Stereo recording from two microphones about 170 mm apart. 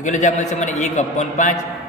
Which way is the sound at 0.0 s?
45° left (ahead or behind).